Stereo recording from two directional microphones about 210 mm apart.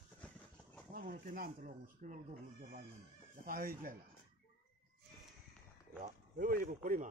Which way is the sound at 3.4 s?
40° right (ahead or behind).